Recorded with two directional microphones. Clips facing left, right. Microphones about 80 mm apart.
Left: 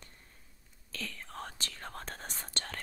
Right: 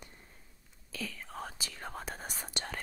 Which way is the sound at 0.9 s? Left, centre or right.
Centre.